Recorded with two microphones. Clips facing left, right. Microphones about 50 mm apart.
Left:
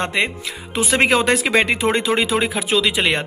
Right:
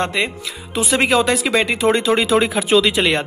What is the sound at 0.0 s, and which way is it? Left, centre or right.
Speech, left.